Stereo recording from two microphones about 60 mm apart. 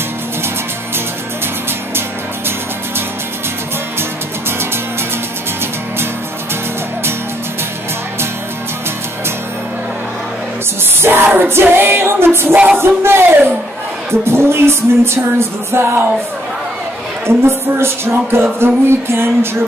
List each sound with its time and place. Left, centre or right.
11.0 s music: right
17.3 s music: right